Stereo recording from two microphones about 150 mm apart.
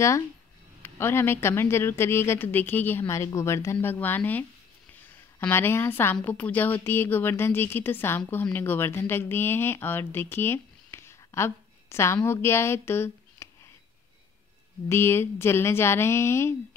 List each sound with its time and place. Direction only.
0.8 s a woman's voice: 15° left (ahead or behind)
14.9 s speech: 15° left (ahead or behind)